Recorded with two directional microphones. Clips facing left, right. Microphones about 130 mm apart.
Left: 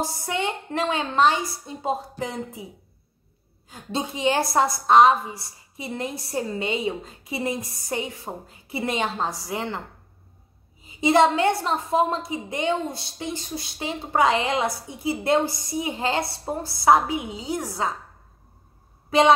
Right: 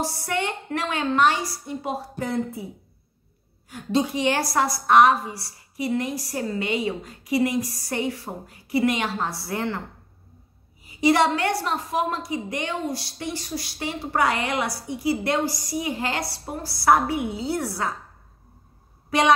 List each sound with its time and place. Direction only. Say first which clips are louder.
0.0 s a woman's voice: even; 20° left (ahead or behind)
3.7 s a woman's voice: right 6 dB; 25° left (ahead or behind)
10.8 s a woman's voice: left 1 dB; 25° left (ahead or behind)
19.0 s speech: left 3 dB; 25° left (ahead or behind)